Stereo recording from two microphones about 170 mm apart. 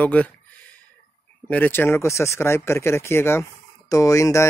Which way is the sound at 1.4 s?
10° left (ahead or behind).